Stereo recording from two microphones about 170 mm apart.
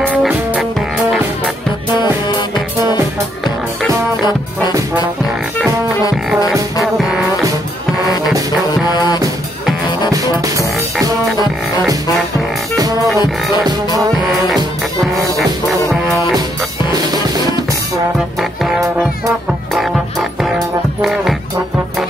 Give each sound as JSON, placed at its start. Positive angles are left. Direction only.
{"t": 0.0, "sound": "music", "side_deg": -10}
{"t": 6.8, "sound": "music", "side_deg": 0}
{"t": 8.9, "sound": "music", "side_deg": 25}
{"t": 17.1, "sound": "music", "side_deg": -20}
{"t": 18.4, "sound": "music", "side_deg": 0}
{"t": 21.0, "sound": "music", "side_deg": 0}